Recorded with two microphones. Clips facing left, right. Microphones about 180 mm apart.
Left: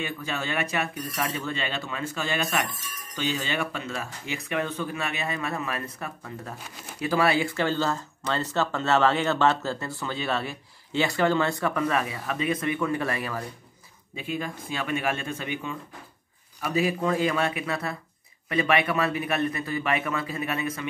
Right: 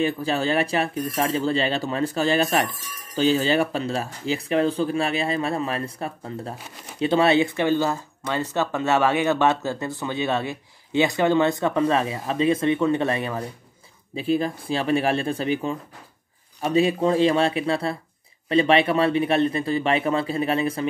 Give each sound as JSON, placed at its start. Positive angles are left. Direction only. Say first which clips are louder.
{"t": 0.0, "sound": "speech", "louder": "right 9 dB", "side_deg": -35}
{"t": 14.1, "sound": "speech", "louder": "right 9 dB", "side_deg": -35}